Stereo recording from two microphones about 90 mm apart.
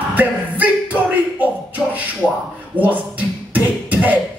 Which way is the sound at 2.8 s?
20° right (ahead or behind).